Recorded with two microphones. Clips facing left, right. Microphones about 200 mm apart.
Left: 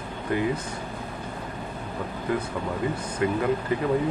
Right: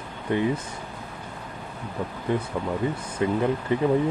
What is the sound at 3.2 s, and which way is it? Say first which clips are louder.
Speech: right 1 dB; 25° right (ahead or behind).